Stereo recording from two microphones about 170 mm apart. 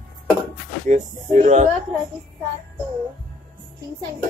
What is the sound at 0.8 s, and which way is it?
Speech, 45° right (ahead or behind).